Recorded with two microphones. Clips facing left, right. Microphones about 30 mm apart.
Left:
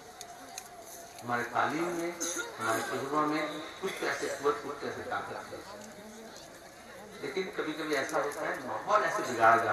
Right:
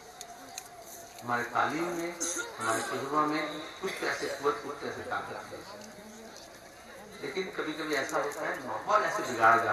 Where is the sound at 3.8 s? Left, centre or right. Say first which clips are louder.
Right 1 dB; right.